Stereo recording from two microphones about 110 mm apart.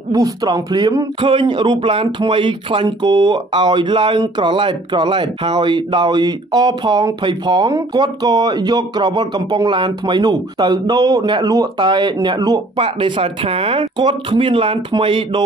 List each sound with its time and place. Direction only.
0.1 s speech: 35° right (ahead or behind)
12.7 s speech: 50° right (ahead or behind)